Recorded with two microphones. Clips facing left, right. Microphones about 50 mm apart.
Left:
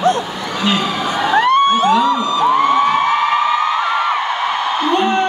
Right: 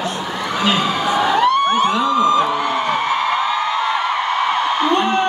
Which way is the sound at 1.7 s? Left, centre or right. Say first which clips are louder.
Left 3 dB; right.